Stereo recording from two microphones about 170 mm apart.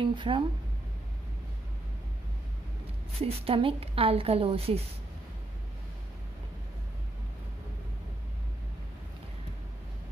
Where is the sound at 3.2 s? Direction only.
35° right (ahead or behind).